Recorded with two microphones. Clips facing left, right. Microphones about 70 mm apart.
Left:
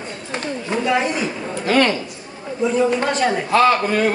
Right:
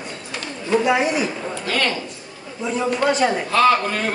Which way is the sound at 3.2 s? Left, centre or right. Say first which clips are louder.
Left 2 dB; centre.